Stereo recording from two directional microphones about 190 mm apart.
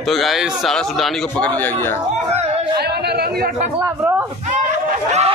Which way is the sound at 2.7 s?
60° right (ahead or behind).